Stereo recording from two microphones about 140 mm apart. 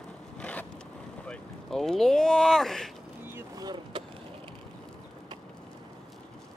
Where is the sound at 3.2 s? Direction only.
15° right (ahead or behind).